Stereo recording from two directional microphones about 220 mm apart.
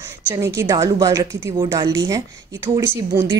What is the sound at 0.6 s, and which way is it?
Speech, 15° right (ahead or behind).